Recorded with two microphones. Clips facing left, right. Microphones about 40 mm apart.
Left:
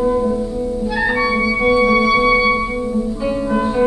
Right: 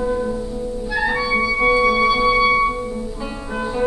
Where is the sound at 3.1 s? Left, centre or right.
Centre.